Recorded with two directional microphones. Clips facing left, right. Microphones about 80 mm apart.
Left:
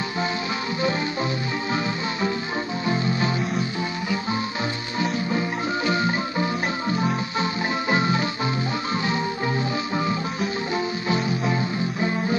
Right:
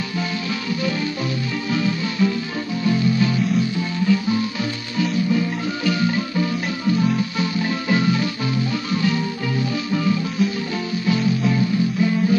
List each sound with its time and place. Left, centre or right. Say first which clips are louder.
1.7 s music: right 5 dB; left